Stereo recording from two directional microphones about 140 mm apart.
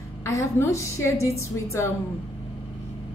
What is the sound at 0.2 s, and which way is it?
A woman's voice, 20° left (ahead or behind).